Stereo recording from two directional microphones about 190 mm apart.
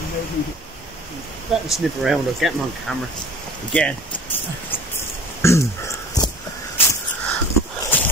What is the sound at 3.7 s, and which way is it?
Speech, 10° left (ahead or behind).